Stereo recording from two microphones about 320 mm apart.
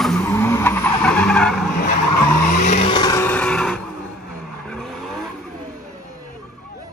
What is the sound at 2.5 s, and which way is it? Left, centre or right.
Vehicle, left.